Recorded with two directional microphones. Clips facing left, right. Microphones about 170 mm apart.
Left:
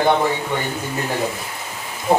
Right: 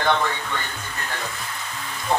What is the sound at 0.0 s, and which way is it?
A man's voice, 15° left (ahead or behind).